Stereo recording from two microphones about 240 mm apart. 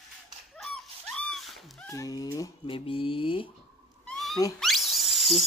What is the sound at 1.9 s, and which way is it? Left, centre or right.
Speech, centre.